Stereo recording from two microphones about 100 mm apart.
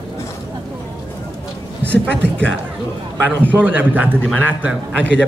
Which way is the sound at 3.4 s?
15° right (ahead or behind).